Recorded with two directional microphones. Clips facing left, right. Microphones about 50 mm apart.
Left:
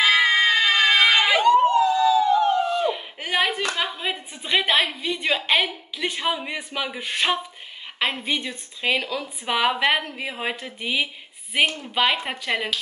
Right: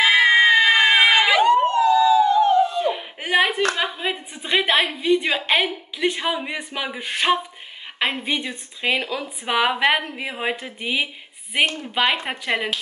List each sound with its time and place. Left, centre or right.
0.1 s crowd: centre
1.4 s dog: right
2.8 s a sound: centre
3.7 s a woman's voice: centre